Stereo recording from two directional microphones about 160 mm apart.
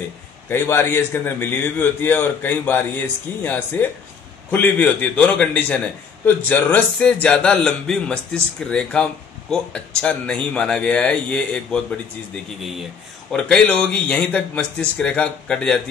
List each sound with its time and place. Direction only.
0.5 s a man's voice: 15° left (ahead or behind)
13.3 s a man's voice: 5° left (ahead or behind)